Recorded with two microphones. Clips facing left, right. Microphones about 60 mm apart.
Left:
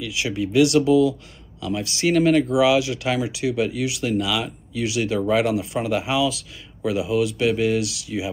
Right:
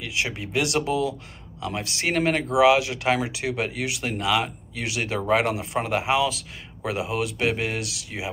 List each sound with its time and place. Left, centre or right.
0.0 s speech: right